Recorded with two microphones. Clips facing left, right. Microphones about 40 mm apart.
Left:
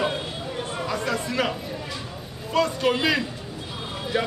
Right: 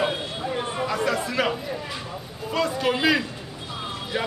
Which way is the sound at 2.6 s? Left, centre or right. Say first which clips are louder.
Left 2 dB; centre.